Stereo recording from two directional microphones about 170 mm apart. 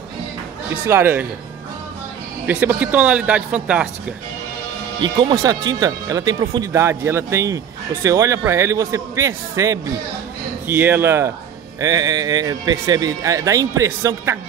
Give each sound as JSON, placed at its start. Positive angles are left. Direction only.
{"t": 0.8, "sound": "a man's voice", "side_deg": -15}
{"t": 2.4, "sound": "a man's voice", "side_deg": -10}
{"t": 5.3, "sound": "a man's voice", "side_deg": -20}